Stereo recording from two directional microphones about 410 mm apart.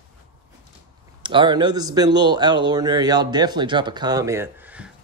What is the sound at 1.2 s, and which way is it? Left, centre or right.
A man's voice, centre.